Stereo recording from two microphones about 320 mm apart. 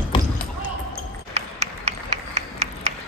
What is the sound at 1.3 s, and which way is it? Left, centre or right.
Run, right.